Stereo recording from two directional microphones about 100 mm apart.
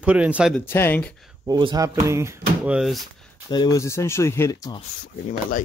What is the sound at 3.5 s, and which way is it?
Speech, 45° left (ahead or behind).